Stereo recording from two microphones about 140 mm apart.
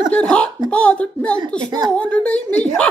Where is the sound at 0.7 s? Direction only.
10° left (ahead or behind).